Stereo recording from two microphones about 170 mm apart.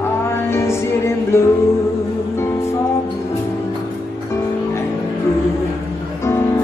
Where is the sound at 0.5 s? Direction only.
15° left (ahead or behind).